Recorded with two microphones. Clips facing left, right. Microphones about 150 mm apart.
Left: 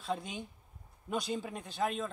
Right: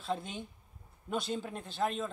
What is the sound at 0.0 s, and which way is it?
Speech, centre (ahead or behind).